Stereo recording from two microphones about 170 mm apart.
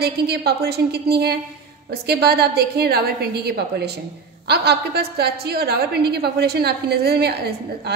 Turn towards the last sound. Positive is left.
turn(degrees=-70)  # may be behind; listen again after turning